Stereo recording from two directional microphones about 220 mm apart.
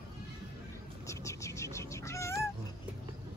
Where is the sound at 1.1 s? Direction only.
15° left (ahead or behind).